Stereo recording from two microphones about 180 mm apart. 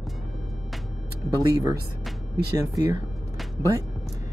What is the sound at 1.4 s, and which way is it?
Speech, 20° right (ahead or behind).